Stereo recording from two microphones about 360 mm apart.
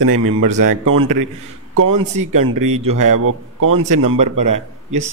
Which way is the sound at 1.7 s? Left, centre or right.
Right.